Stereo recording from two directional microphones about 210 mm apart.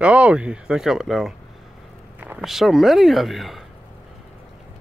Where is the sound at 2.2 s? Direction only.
5° right (ahead or behind).